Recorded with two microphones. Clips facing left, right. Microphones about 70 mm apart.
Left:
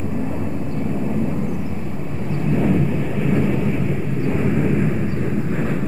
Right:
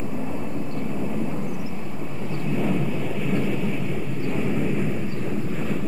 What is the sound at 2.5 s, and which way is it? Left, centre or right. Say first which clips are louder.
Vehicle: left 6 dB; left.